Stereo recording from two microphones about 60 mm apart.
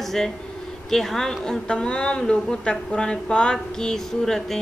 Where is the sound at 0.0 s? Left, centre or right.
Centre.